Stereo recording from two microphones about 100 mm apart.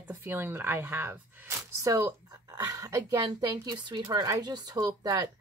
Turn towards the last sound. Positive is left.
turn(degrees=-40)  # may be behind; listen again after turning